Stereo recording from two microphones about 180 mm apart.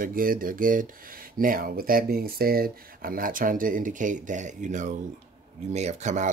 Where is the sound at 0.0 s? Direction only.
50° right (ahead or behind).